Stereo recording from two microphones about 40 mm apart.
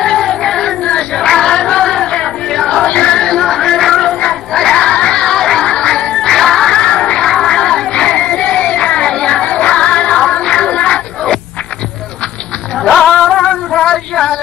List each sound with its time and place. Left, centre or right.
0.0 s child singing: centre
2.5 s music: centre
4.3 s a sound: centre
5.6 s music: left
6.7 s music: left
7.2 s child singing: centre
9.1 s music: centre
9.4 s music: left
12.8 s music: centre
13.7 s a sound: centre